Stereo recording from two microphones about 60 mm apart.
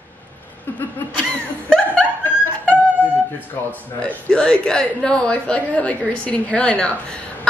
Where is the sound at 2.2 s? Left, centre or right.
Left.